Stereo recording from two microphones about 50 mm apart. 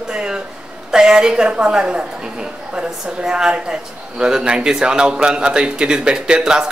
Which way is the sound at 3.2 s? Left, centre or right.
Centre.